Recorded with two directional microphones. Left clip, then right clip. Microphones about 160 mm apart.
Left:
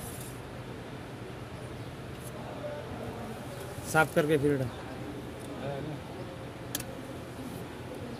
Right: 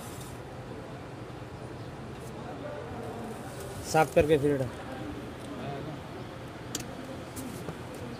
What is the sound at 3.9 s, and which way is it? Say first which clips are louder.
Speech: right 2 dB; 5° left (ahead or behind).